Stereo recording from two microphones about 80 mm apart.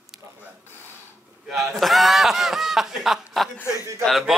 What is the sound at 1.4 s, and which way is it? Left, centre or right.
Speech, centre.